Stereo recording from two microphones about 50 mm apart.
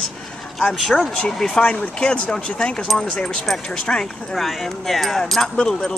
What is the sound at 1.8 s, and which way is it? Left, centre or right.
Speech, left.